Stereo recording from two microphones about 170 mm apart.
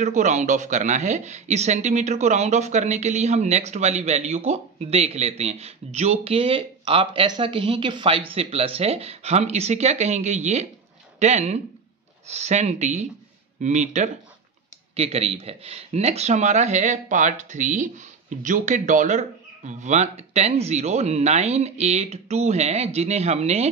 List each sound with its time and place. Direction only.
0.0 s speech: 45° right (ahead or behind)